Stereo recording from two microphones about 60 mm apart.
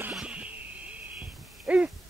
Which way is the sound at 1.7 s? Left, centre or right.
Right.